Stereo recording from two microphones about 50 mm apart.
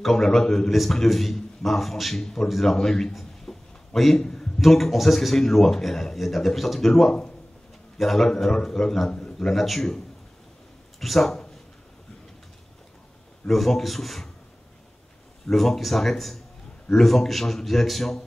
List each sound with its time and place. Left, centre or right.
0.0 s a man's voice: centre
9.1 s a sound: centre
9.5 s a man's voice: centre
13.5 s a man's voice: centre
15.5 s a man's voice: centre